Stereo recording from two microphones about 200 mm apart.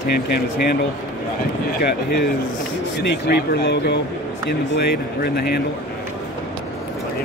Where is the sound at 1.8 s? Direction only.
50° left (ahead or behind).